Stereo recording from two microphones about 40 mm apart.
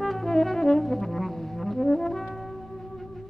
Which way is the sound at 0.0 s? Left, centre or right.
Centre.